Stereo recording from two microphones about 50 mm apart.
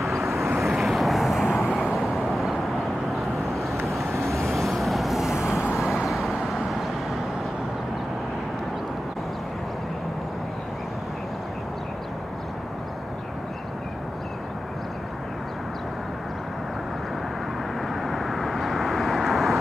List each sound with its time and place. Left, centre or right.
0.0 s vehicle: centre
2.0 s vehicle: centre
5.5 s vehicle: left
6.0 s vehicle: centre
18.0 s vehicle: centre